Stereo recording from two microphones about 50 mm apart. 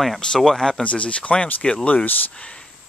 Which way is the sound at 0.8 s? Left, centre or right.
Left.